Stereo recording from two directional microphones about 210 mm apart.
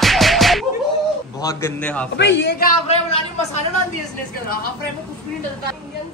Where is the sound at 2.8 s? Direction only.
30° left (ahead or behind).